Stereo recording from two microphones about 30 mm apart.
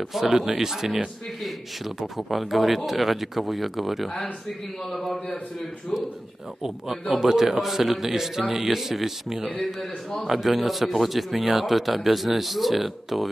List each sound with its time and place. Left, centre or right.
0.1 s a man's voice: centre
6.6 s a man's voice: centre
7.2 s a man's voice: centre